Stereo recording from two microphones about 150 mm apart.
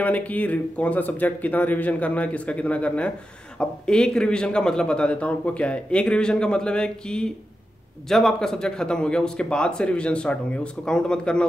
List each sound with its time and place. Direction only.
0.0 s a man's voice: 10° left (ahead or behind)